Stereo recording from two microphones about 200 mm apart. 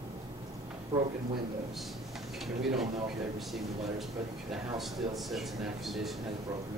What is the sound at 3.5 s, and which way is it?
A man's voice, centre (ahead or behind).